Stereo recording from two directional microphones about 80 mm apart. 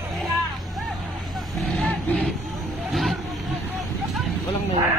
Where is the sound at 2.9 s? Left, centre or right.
Centre.